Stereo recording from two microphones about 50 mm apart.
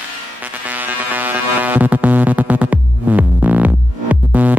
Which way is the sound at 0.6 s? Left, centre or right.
Right.